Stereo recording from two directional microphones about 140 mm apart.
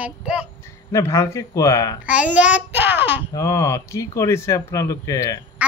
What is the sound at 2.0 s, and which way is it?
A child's voice, 10° right (ahead or behind).